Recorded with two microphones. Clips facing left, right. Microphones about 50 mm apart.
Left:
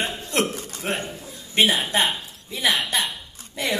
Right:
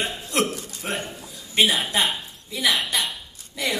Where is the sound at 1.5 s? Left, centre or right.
Left.